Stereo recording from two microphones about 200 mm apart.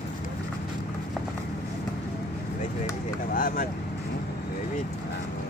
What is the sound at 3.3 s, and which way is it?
Vehicle, 45° left (ahead or behind).